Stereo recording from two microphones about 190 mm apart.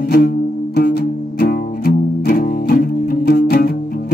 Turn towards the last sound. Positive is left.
turn(degrees=55)  # may be behind; listen again after turning